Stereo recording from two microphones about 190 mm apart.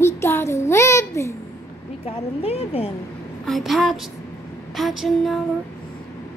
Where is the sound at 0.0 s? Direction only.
15° left (ahead or behind).